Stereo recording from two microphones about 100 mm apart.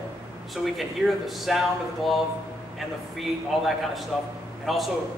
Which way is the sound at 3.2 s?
Centre (ahead or behind).